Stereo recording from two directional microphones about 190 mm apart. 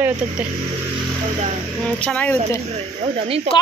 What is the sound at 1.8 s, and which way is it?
Speech, 5° left (ahead or behind).